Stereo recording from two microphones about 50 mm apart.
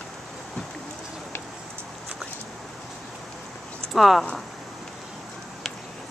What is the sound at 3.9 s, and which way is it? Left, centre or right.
Speech, centre.